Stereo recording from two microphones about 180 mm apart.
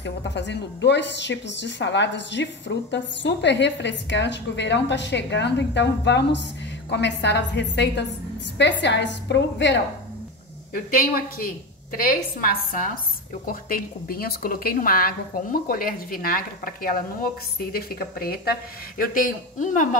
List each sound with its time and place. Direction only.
0.0 s a woman's voice: 75° left (ahead or behind)
10.7 s a woman's voice: 50° left (ahead or behind)